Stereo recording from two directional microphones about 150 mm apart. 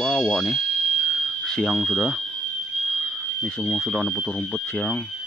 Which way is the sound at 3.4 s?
Centre (ahead or behind).